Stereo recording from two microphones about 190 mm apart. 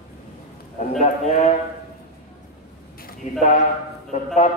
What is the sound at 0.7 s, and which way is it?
Speech, 40° left (ahead or behind).